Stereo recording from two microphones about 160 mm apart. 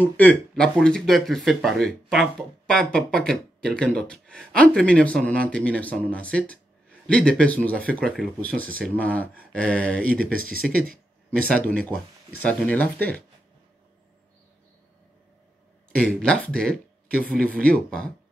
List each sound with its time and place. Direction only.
0.0 s speech: 10° left (ahead or behind)
10.3 s speech: 65° right (ahead or behind)
11.6 s speech: 10° left (ahead or behind)
16.0 s speech: 5° left (ahead or behind)